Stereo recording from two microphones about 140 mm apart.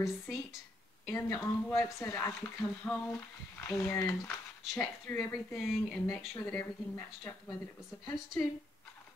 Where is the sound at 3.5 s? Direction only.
20° left (ahead or behind).